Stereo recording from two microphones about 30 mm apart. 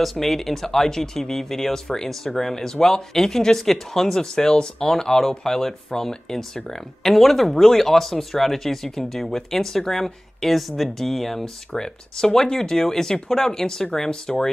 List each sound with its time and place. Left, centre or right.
0.0 s speech: centre
7.0 s speech: centre
11.7 s speech: centre